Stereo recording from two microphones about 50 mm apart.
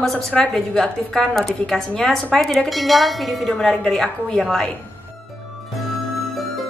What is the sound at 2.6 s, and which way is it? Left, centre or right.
Tubular bells, centre.